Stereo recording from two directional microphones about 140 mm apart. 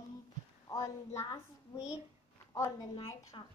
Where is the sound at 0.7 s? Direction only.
25° left (ahead or behind).